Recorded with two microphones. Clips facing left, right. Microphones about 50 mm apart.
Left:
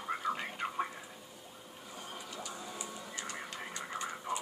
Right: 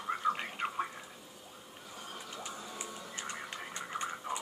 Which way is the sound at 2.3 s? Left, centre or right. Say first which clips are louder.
Even; right.